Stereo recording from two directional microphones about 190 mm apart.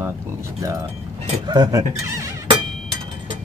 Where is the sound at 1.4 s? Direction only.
20° right (ahead or behind).